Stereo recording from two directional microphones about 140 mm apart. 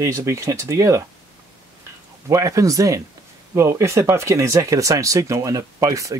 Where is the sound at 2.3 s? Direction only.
20° right (ahead or behind).